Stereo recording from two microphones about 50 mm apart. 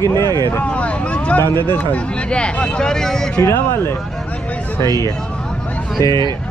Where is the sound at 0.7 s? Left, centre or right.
Left.